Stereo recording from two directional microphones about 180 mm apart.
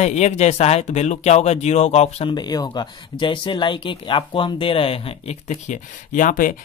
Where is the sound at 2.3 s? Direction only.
20° left (ahead or behind).